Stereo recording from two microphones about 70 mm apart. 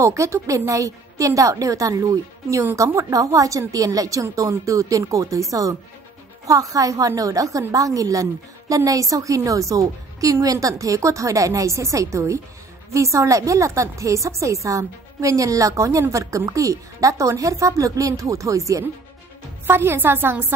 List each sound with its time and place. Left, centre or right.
0.0 s a woman's voice: right
2.7 s a woman's voice: right
3.1 s a woman's voice: right
19.6 s a woman's voice: right